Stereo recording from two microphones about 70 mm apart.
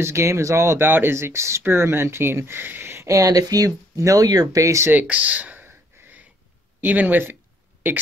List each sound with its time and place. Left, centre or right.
0.0 s speech: right
3.1 s speech: right
5.0 s a sound: right
6.8 s speech: right